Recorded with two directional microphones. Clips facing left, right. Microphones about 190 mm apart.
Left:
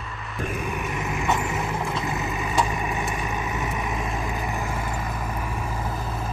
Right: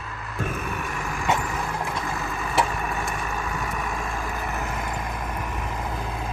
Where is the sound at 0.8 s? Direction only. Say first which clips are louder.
Even; 20° left (ahead or behind).